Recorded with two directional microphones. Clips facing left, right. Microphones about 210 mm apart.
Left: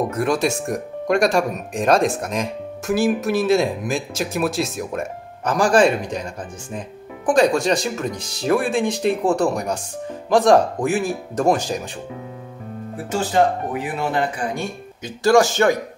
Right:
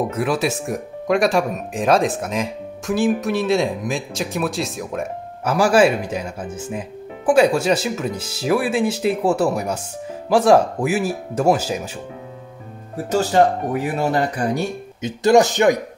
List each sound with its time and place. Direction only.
0.0 s speech: 5° right (ahead or behind)
12.9 s speech: 40° right (ahead or behind)
15.0 s speech: 20° right (ahead or behind)